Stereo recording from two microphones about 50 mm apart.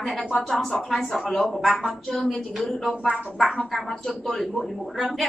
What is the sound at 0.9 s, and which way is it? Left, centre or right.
A woman's voice, centre.